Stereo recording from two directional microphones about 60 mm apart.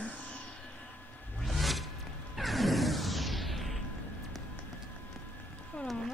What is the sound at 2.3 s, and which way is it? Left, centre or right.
Music, centre.